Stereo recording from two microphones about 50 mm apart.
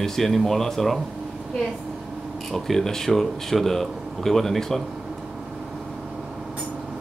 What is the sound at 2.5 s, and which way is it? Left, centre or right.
Speech, centre.